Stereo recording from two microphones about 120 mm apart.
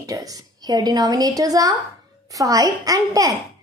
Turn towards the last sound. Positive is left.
turn(degrees=-30)  # may be behind; listen again after turning